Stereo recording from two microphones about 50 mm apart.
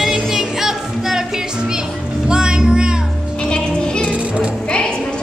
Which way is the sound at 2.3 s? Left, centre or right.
Centre.